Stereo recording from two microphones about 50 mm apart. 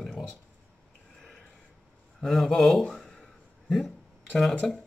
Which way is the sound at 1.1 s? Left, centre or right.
Centre.